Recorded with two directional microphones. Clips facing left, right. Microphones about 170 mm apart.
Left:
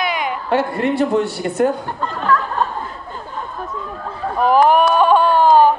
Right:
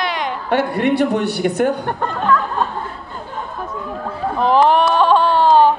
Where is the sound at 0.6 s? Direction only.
65° right (ahead or behind).